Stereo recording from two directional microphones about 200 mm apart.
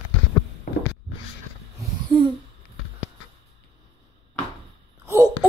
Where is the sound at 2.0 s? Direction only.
25° right (ahead or behind).